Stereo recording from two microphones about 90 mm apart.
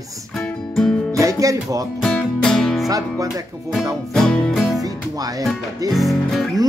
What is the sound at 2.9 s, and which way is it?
Speech, 40° right (ahead or behind).